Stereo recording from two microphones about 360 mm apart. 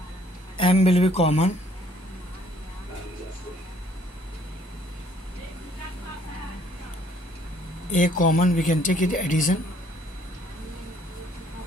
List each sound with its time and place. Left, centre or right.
0.6 s speech: centre
7.9 s speech: left